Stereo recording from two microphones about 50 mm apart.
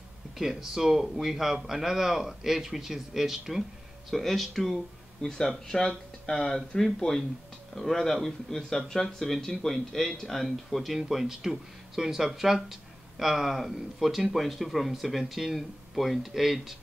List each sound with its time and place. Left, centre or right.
0.4 s a man's voice: centre
5.2 s speech: centre